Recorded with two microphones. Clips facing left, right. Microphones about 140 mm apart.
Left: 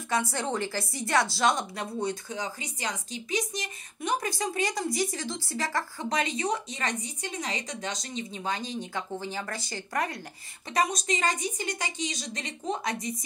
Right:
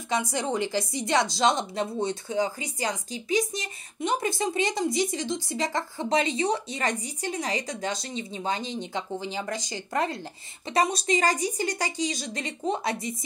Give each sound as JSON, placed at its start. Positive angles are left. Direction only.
{"t": 0.1, "sound": "a woman's voice", "side_deg": -15}